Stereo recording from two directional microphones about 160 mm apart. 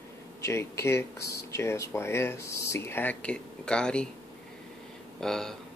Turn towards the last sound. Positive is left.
turn(degrees=5)  # may be behind; listen again after turning